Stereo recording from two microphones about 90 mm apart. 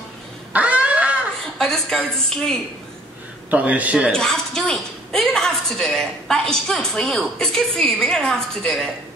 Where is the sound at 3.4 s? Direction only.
15° right (ahead or behind).